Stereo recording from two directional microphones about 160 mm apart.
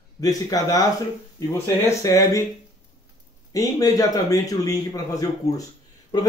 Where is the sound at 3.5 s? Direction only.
20° left (ahead or behind).